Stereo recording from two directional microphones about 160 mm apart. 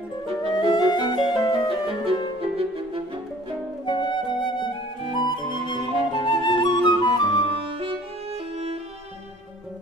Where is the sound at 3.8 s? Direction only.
30° left (ahead or behind).